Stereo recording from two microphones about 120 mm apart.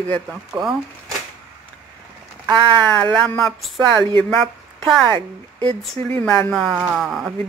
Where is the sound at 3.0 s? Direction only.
10° left (ahead or behind).